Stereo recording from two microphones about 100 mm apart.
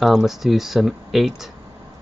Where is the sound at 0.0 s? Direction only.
Centre (ahead or behind).